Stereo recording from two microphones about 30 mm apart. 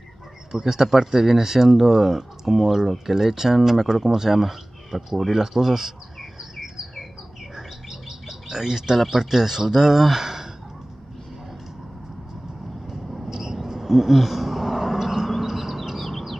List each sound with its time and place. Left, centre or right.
0.5 s speech: centre
5.3 s speech: centre
7.5 s bird: centre
9.1 s speech: centre
12.8 s vehicle: centre
13.7 s a sound: centre
15.4 s chirp: centre